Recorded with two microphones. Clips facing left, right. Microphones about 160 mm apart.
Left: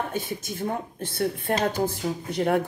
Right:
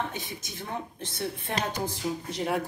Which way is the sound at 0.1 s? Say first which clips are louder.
Left 8 dB; 50° left (ahead or behind).